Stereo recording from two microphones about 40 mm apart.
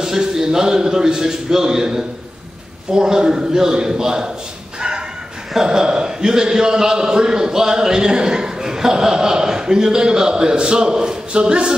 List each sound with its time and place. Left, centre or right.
0.0 s a man's voice: centre
4.7 s bow-wow: centre
5.6 s a man's voice: centre